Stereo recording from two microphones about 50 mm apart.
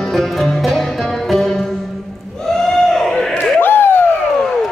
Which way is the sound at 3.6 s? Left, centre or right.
Left.